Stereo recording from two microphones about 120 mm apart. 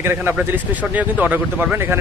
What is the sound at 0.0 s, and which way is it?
Speech, 20° right (ahead or behind).